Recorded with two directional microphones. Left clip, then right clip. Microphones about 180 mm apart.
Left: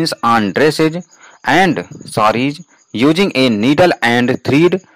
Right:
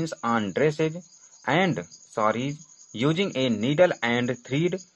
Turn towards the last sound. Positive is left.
turn(degrees=50)  # may be behind; listen again after turning